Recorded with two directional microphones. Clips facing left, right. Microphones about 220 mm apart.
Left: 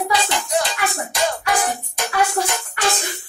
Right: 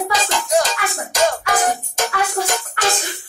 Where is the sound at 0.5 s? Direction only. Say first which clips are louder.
Right 3 dB; 45° right (ahead or behind).